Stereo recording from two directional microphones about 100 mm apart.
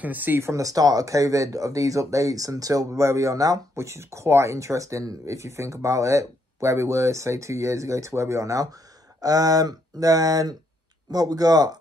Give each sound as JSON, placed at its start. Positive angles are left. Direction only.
{"t": 0.0, "sound": "speech", "side_deg": -15}